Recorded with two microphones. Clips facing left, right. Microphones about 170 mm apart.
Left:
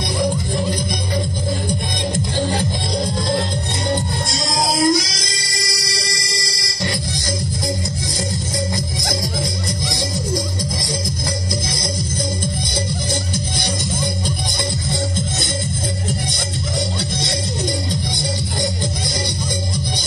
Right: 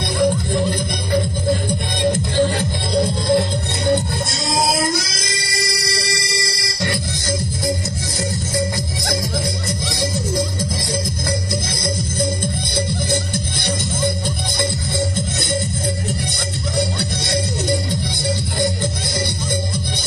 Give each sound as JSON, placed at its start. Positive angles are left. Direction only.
{"t": 4.5, "sound": "music", "side_deg": -60}